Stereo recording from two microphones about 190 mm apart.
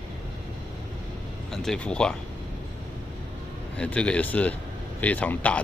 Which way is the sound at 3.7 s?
5° left (ahead or behind).